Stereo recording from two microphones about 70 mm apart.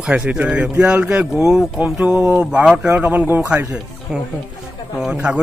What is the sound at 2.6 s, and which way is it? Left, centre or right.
Speech, centre.